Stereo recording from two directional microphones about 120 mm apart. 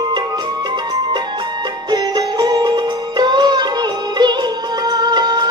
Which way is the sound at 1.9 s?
35° right (ahead or behind).